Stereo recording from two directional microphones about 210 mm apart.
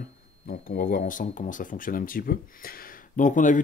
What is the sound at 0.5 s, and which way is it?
Speech, 45° left (ahead or behind).